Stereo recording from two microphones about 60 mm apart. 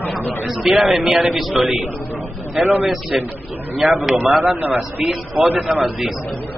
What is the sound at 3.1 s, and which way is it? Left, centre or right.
A man's voice, centre.